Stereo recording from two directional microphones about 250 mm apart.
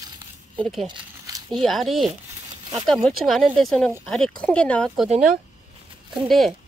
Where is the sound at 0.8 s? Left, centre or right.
Centre.